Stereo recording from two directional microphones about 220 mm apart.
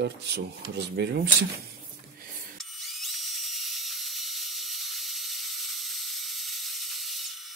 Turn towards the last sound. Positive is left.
turn(degrees=0)  # may be behind; listen again after turning